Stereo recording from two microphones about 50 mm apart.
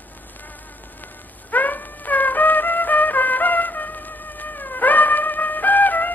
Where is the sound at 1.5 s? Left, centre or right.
Left.